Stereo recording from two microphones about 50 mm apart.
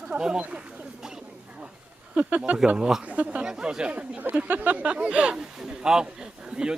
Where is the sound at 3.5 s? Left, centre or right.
Centre.